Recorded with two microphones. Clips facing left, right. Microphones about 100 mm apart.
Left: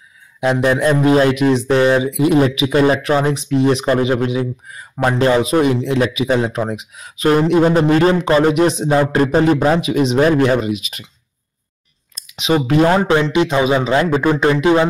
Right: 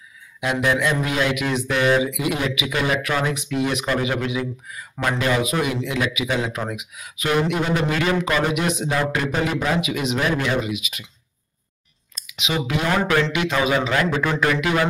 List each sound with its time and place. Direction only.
0.4 s a man's voice: 35° left (ahead or behind)
12.3 s speech: 40° left (ahead or behind)